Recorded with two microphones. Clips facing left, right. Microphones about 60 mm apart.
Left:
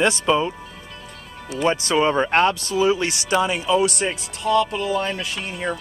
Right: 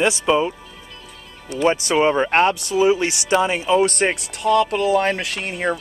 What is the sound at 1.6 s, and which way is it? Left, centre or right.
Speech, right.